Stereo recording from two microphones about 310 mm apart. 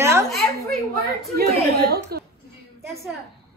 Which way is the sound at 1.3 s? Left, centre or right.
Right.